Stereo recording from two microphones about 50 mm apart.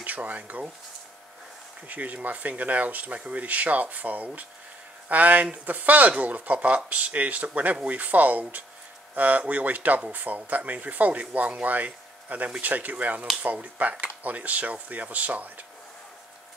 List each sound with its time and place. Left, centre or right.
0.0 s speech: right
1.9 s speech: right